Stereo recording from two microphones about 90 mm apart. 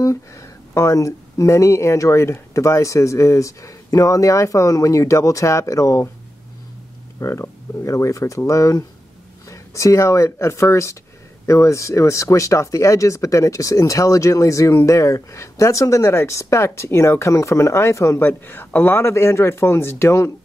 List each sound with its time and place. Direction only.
0.0 s speech: 35° left (ahead or behind)
7.2 s speech: 30° left (ahead or behind)